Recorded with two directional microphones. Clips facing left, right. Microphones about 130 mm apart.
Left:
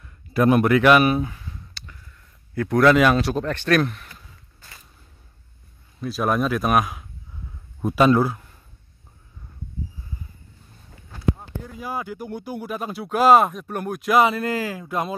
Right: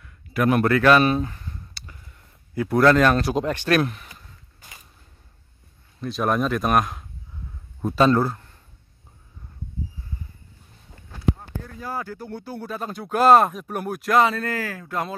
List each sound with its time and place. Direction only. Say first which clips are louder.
0.0 s a sound: left 3 dB; 30° left (ahead or behind)
0.6 s speech: even; 15° left (ahead or behind)
3.3 s speech: even; 10° right (ahead or behind)
4.1 s a sound: even; 15° right (ahead or behind)
5.9 s speech: even; 5° left (ahead or behind)
11.3 s speech: left 1 dB; 15° left (ahead or behind); by 14.1 s 5° right (ahead or behind)
14.1 s speech: left 1 dB; 15° left (ahead or behind)